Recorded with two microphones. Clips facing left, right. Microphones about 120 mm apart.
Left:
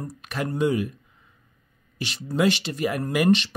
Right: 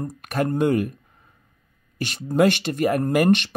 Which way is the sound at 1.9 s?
50° right (ahead or behind).